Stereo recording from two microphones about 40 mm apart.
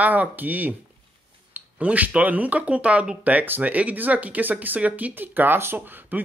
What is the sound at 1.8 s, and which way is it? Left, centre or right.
Speech, right.